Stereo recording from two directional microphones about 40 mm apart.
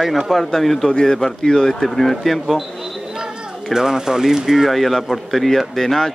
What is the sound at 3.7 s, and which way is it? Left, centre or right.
Speech, centre.